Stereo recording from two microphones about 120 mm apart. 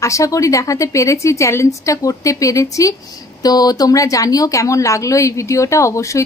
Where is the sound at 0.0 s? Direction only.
25° left (ahead or behind).